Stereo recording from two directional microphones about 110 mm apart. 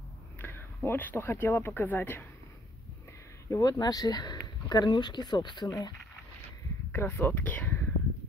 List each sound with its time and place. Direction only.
0.4 s speech: 20° left (ahead or behind)
3.4 s speech: 30° left (ahead or behind)
6.9 s speech: 20° left (ahead or behind)